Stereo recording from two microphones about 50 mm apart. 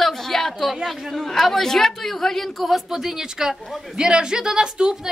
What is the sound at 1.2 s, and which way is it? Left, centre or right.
A woman's voice, centre.